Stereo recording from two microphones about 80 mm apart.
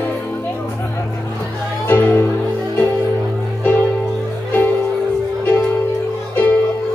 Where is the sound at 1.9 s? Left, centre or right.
Left.